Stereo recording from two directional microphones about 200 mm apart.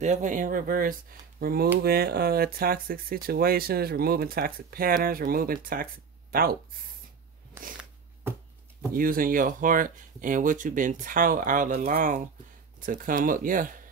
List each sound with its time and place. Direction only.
0.0 s speech: 35° right (ahead or behind)
7.7 s a sound: 10° right (ahead or behind)
8.9 s speech: 45° right (ahead or behind)